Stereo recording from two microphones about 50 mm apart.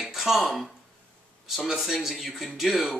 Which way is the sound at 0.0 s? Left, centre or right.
Centre.